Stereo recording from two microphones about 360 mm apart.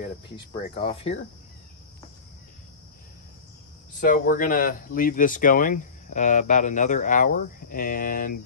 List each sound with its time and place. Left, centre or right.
0.5 s speech: centre
4.0 s speech: left